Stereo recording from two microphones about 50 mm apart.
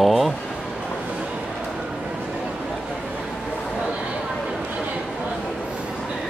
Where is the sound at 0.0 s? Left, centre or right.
Centre.